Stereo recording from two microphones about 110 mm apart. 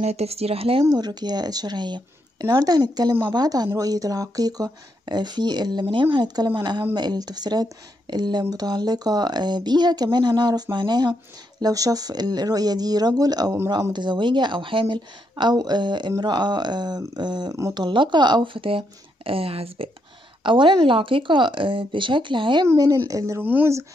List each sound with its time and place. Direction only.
0.0 s speech: 75° right (ahead or behind)
0.8 s speech: 35° right (ahead or behind)
13.9 s speech: 45° right (ahead or behind); by 19.9 s 60° right (ahead or behind)
20.4 s speech: 45° right (ahead or behind)
22.8 s speech: 30° right (ahead or behind)